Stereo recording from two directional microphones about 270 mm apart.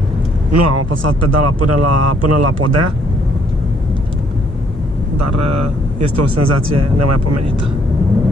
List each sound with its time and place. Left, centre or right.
0.5 s speech: right
5.2 s speech: right